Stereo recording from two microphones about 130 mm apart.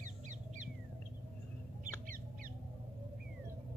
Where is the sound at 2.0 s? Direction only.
90° right.